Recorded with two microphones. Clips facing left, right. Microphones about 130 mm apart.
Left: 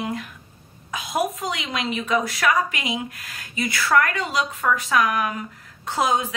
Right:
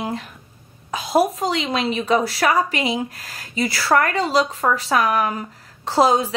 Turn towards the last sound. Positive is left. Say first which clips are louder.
# right 5 dB
turn(degrees=-35)  # may be behind; listen again after turning